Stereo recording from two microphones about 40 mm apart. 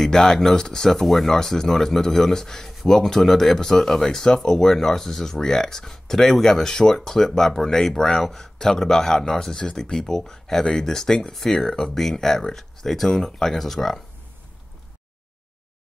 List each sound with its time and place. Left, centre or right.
0.0 s speech: centre